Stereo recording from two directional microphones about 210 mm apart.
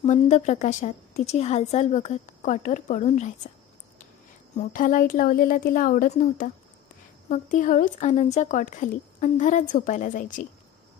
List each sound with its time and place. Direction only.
0.0 s a woman's voice: 30° left (ahead or behind)
4.6 s a woman's voice: 40° left (ahead or behind)